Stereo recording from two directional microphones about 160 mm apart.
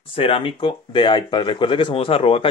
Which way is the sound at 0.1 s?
35° left (ahead or behind).